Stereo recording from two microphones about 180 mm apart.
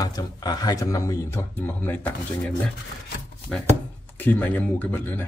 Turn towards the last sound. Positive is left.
turn(degrees=10)  # may be behind; listen again after turning